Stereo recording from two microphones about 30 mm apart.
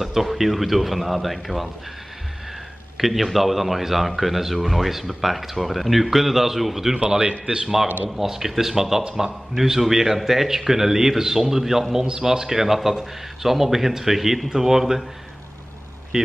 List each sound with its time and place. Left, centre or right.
0.0 s a man's voice: centre
3.0 s a man's voice: centre
7.2 s speech: right
8.2 s a man's voice: centre